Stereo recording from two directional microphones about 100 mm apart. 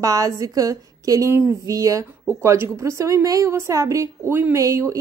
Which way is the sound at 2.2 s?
25° right (ahead or behind).